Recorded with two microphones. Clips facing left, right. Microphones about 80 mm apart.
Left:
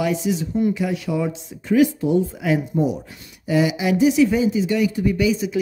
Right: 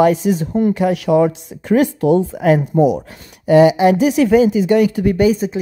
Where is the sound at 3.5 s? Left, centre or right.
Right.